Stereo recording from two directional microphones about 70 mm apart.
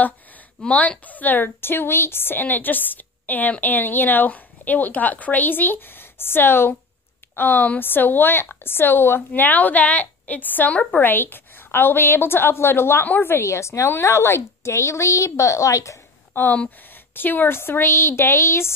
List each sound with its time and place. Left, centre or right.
0.7 s a woman's voice: left
16.3 s a woman's voice: left